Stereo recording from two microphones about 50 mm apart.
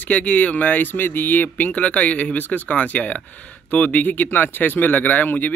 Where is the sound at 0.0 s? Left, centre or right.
Left.